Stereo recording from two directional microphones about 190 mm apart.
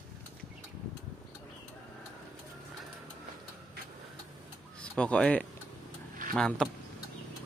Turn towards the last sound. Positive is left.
turn(degrees=5)  # may be behind; listen again after turning